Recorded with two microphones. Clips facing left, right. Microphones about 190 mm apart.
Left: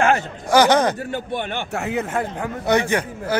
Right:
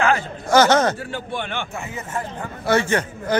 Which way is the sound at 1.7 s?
70° left (ahead or behind).